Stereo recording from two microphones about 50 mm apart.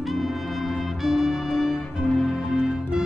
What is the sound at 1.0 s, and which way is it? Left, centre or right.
Music, centre.